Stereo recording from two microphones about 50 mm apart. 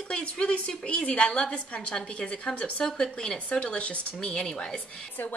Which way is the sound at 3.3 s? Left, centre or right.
Left.